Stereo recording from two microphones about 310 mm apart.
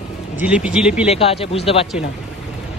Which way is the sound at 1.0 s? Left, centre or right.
Centre.